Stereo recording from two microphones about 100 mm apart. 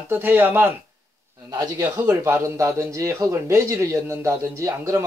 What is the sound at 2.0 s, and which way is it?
A man's voice, 30° right (ahead or behind).